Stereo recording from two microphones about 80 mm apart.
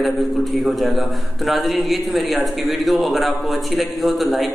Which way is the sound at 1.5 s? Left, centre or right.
Centre.